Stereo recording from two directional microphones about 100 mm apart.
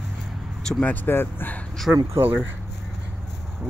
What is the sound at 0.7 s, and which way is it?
Speech, 10° left (ahead or behind).